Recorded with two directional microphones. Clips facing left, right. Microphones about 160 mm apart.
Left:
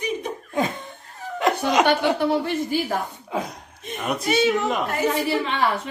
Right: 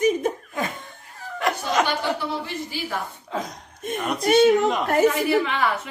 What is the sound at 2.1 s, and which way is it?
Speech, 50° left (ahead or behind).